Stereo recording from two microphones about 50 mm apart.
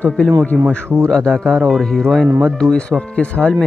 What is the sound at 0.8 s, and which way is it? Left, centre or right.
Speech, right.